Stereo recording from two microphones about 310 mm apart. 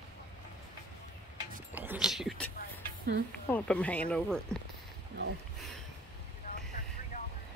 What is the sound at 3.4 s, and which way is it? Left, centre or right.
Speech, centre.